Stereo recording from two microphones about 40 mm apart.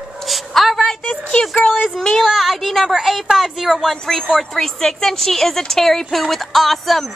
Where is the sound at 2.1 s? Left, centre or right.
Centre.